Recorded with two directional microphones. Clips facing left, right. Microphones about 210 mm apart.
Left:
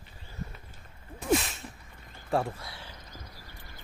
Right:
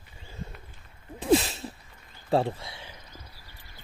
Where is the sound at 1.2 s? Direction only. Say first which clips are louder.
Right 5 dB; 35° right (ahead or behind).